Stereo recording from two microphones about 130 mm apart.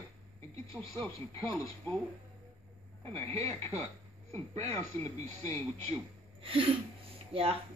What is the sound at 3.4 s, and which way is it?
Speech, 20° left (ahead or behind).